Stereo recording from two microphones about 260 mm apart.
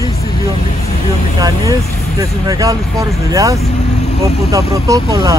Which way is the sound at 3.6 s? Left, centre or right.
Left.